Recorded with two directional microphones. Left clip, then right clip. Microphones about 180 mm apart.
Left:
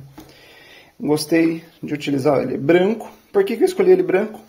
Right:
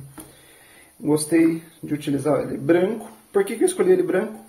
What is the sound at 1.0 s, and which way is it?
Speech, 40° left (ahead or behind).